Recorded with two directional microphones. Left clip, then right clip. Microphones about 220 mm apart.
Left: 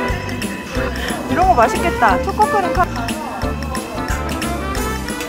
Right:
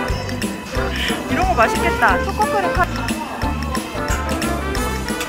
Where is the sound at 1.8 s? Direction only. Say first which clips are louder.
Left 1 dB; 55° left (ahead or behind).